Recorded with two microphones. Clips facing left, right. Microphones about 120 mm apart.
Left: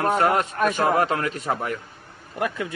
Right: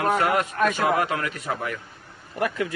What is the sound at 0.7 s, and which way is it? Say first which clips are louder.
Speech: left 4 dB; 45° left (ahead or behind).